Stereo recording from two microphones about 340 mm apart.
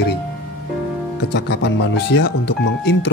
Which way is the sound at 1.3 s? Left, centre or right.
Left.